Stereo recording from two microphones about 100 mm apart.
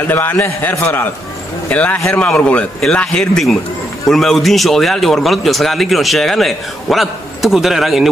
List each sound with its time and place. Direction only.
0.0 s a man's voice: 20° left (ahead or behind); by 8.1 s 5° right (ahead or behind)